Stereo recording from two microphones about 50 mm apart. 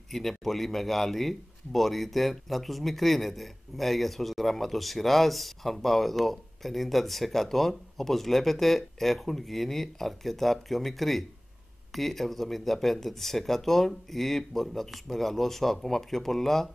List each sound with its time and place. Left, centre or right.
0.1 s a man's voice: centre